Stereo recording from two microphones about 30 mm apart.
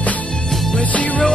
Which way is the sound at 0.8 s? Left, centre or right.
Left.